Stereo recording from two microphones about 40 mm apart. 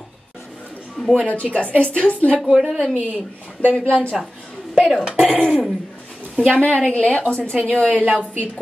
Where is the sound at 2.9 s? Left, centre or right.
Right.